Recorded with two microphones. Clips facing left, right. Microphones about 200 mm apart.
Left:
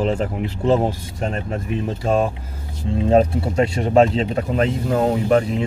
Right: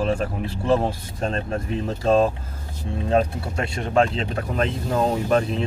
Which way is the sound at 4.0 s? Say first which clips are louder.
Left 5 dB; 20° left (ahead or behind).